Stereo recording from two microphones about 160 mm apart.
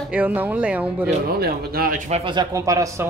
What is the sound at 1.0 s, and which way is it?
Speech, 75° right (ahead or behind).